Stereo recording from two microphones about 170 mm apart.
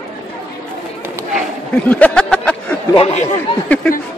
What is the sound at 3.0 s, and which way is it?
Speech, 35° left (ahead or behind).